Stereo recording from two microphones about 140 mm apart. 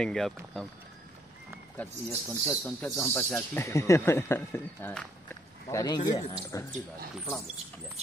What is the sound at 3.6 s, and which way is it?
Speech, 20° left (ahead or behind).